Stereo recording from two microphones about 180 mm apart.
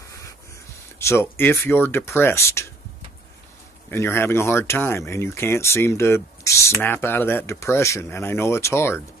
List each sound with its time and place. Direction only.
0.9 s speech: 15° left (ahead or behind)
3.9 s speech: 15° left (ahead or behind)